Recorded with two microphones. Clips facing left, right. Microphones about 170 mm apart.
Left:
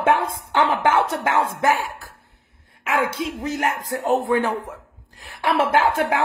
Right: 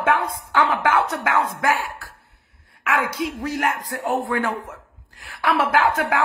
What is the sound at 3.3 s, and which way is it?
A man's voice, 20° left (ahead or behind).